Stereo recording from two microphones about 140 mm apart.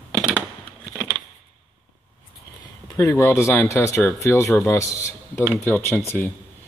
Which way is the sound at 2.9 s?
20° left (ahead or behind).